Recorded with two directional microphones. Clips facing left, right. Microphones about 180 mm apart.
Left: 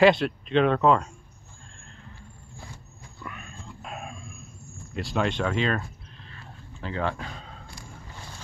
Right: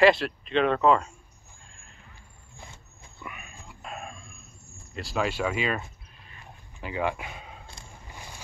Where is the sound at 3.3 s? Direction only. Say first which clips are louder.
Left 2 dB; 10° right (ahead or behind).